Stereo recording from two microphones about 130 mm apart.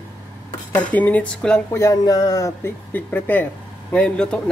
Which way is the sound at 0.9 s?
10° left (ahead or behind).